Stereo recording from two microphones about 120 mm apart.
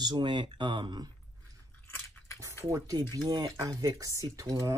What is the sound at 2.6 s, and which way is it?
Speech, 30° right (ahead or behind).